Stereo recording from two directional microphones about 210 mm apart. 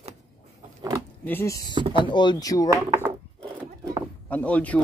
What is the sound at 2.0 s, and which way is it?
Speech, 20° left (ahead or behind).